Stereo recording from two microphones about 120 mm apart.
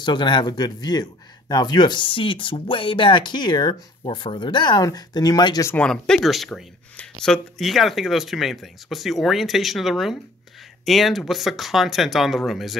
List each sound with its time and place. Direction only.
0.0 s speech: 40° left (ahead or behind)
5.7 s speech: 10° left (ahead or behind)